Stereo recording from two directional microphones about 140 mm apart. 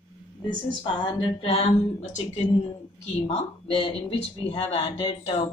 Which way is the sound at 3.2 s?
40° left (ahead or behind).